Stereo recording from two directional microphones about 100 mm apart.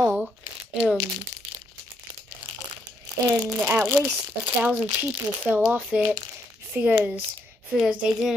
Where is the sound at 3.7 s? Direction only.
20° right (ahead or behind).